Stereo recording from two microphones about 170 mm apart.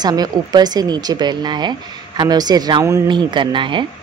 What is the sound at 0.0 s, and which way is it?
Speech, 25° right (ahead or behind).